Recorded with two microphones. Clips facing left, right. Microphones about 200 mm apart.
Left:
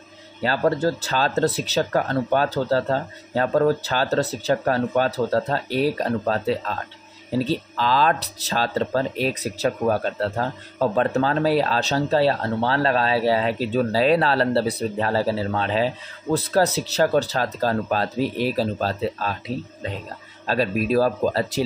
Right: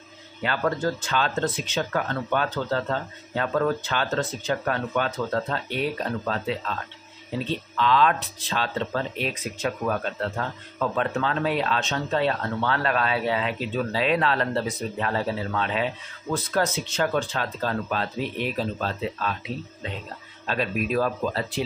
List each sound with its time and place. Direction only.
0.4 s speech: 35° left (ahead or behind)